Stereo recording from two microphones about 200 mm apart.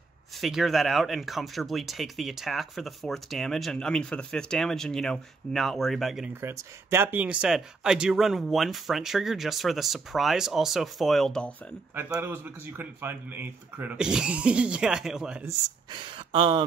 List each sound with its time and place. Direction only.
0.4 s speech: centre (ahead or behind)
6.4 s speech: 10° right (ahead or behind)
11.9 s speech: 10° right (ahead or behind)
15.4 s speech: 25° right (ahead or behind)